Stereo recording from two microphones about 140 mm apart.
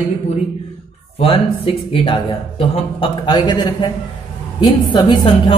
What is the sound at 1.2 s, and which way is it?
A man's voice, 40° left (ahead or behind).